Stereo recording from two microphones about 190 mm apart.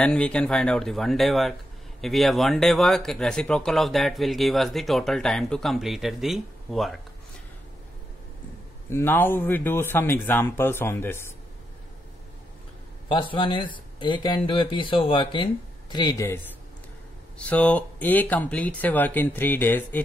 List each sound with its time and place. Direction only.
0.0 s speech: 5° left (ahead or behind)
8.8 s speech: 10° left (ahead or behind)
13.1 s speech: 25° left (ahead or behind)
17.4 s speech: 10° left (ahead or behind)